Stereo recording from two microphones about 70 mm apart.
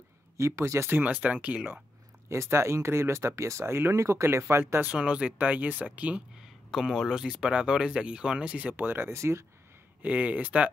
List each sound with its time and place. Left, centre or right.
0.4 s speech: right
0.9 s speech: right
2.2 s speech: right
4.8 s speech: centre
6.7 s speech: centre; by 9.1 s right
9.1 s speech: right
10.0 s speech: right